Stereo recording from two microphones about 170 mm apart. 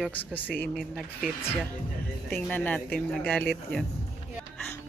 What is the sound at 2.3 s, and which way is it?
Speech, 10° left (ahead or behind).